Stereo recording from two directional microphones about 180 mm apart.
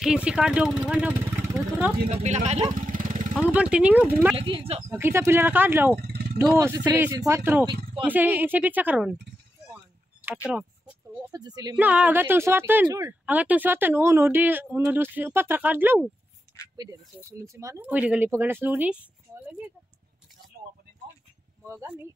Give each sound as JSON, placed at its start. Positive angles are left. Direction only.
{"t": 0.0, "sound": "speech", "side_deg": -5}
{"t": 2.0, "sound": "speech", "side_deg": -40}
{"t": 3.4, "sound": "speech", "side_deg": -5}
{"t": 4.4, "sound": "speech", "side_deg": -30}
{"t": 4.9, "sound": "speech", "side_deg": -15}
{"t": 5.9, "sound": "vehicle", "side_deg": -65}
{"t": 6.4, "sound": "speech", "side_deg": -10}
{"t": 10.2, "sound": "speech", "side_deg": -5}
{"t": 11.3, "sound": "a woman's voice", "side_deg": -20}
{"t": 11.7, "sound": "speech", "side_deg": -5}
{"t": 13.2, "sound": "speech", "side_deg": -10}
{"t": 21.6, "sound": "speech", "side_deg": -10}